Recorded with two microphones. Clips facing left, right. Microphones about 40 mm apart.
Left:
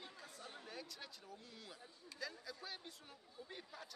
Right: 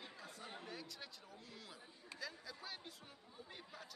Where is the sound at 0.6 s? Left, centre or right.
Centre.